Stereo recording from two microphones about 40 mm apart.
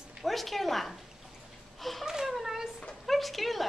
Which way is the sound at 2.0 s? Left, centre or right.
Centre.